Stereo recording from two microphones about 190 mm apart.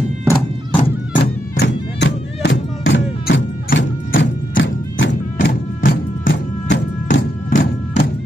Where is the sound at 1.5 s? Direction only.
70° left (ahead or behind).